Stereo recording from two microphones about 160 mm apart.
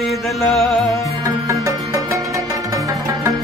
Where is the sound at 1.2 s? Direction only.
20° right (ahead or behind).